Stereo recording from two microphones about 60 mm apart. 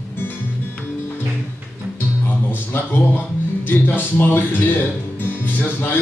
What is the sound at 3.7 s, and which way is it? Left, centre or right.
Speech, left.